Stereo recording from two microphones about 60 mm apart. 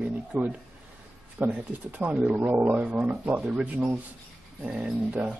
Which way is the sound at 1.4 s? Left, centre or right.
Right.